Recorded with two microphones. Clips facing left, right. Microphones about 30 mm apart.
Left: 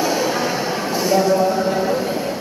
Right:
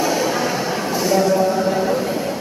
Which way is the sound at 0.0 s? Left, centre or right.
Centre.